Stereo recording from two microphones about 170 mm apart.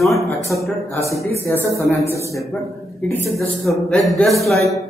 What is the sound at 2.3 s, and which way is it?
A man's voice, 5° left (ahead or behind).